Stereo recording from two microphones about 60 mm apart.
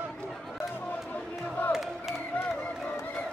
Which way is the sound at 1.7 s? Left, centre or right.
Centre.